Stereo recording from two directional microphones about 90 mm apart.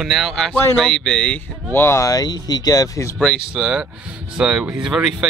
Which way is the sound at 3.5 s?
10° right (ahead or behind).